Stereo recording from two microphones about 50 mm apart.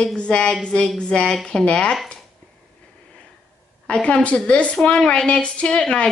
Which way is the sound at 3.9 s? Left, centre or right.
Left.